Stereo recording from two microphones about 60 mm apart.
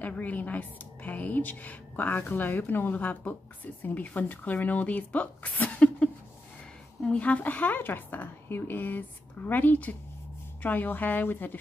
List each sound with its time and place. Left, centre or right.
0.0 s a woman's voice: left
7.1 s a woman's voice: left